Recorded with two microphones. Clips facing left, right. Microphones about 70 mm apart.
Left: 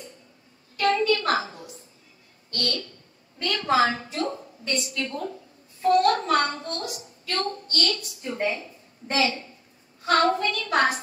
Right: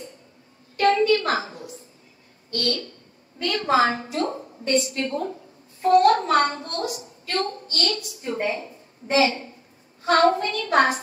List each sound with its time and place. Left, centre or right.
1.0 s a child's voice: right
2.6 s a woman's voice: right